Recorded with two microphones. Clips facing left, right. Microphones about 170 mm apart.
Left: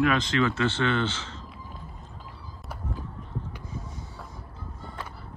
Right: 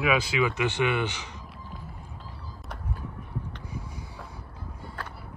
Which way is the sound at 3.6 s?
10° right (ahead or behind).